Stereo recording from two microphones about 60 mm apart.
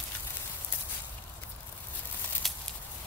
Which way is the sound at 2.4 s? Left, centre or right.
Centre.